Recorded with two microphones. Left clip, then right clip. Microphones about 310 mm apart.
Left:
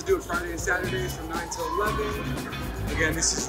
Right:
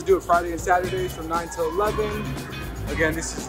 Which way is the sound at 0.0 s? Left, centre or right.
Centre.